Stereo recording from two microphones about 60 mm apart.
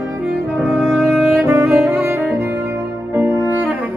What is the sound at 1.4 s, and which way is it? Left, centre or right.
Music, right.